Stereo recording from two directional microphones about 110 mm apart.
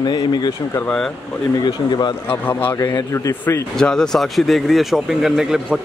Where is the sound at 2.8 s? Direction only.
30° left (ahead or behind).